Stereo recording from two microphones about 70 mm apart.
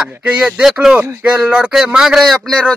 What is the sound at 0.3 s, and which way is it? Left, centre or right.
Speech, centre.